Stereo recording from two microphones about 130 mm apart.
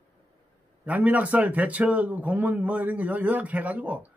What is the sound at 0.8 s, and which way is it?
Speech, 10° right (ahead or behind).